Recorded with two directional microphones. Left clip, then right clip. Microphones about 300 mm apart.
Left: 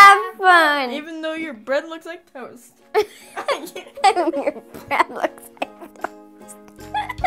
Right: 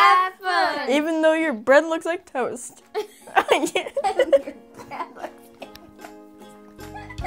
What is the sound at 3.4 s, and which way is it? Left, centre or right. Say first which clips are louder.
Speech: right 6 dB; right.